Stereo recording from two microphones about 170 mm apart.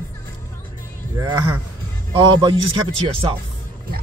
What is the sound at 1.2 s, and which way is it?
Speech, 25° right (ahead or behind).